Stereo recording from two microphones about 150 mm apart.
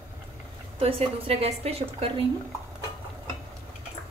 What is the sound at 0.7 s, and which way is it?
A woman's voice, 40° right (ahead or behind).